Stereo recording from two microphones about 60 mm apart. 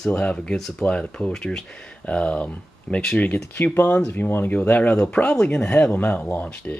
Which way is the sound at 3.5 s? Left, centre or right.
Left.